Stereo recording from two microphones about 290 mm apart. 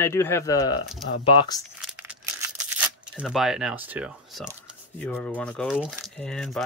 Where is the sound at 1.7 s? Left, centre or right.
Centre.